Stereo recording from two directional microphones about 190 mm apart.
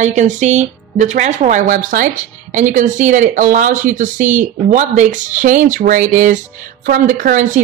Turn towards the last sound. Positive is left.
turn(degrees=-40)  # may be behind; listen again after turning